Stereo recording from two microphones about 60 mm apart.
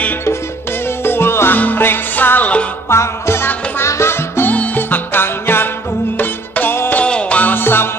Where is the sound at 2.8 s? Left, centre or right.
Left.